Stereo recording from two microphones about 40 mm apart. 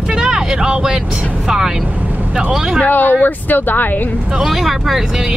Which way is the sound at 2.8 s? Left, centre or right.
Left.